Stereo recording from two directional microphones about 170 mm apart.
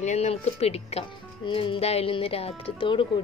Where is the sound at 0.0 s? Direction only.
40° left (ahead or behind).